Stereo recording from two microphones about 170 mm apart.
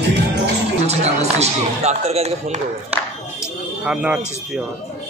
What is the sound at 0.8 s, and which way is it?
Speech, 40° right (ahead or behind).